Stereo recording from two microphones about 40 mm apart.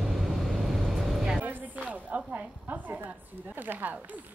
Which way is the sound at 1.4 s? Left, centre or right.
Right.